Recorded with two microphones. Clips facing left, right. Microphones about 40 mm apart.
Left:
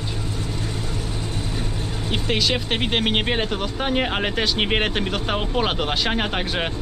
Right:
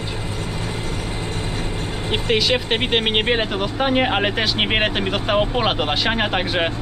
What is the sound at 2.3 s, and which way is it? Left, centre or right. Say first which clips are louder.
Speech: right 3 dB; centre.